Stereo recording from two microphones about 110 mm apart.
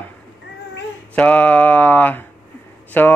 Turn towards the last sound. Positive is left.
turn(degrees=15)  # may be behind; listen again after turning